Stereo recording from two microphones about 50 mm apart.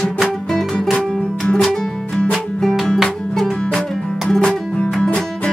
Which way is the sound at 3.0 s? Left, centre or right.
Centre.